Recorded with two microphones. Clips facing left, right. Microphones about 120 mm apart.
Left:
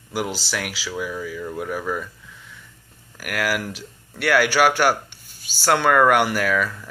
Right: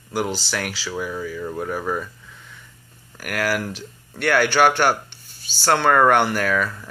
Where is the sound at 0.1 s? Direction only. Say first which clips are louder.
Right 2 dB; 5° left (ahead or behind).